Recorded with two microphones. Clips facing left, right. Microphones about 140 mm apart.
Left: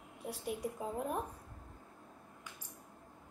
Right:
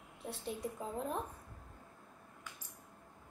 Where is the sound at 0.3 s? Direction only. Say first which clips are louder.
Left 2 dB; 10° left (ahead or behind).